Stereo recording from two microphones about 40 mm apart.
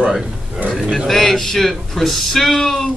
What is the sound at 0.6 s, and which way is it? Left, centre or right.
Speech, right.